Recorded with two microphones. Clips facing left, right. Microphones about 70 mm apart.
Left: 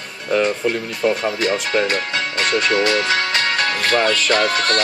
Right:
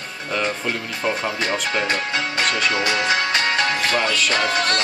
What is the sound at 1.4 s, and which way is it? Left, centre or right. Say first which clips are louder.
Speech: left 4 dB; right.